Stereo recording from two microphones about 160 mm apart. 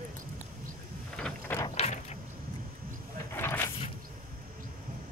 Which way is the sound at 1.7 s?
45° left (ahead or behind).